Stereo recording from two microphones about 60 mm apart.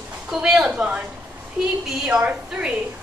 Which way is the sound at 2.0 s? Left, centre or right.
Centre.